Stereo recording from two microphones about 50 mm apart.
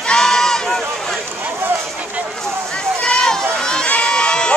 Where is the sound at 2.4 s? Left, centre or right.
Centre.